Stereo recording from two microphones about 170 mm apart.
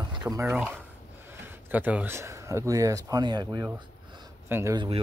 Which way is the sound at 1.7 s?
10° right (ahead or behind).